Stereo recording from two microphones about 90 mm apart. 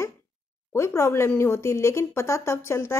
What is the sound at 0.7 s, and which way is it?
Speech, 30° left (ahead or behind).